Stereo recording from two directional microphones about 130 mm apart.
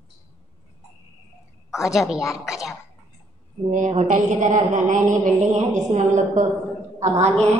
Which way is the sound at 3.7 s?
65° right (ahead or behind).